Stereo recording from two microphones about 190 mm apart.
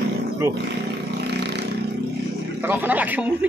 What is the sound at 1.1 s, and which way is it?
Vehicle, 60° right (ahead or behind).